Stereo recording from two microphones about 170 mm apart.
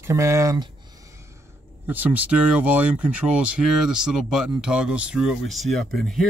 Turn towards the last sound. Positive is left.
turn(degrees=0)  # may be behind; listen again after turning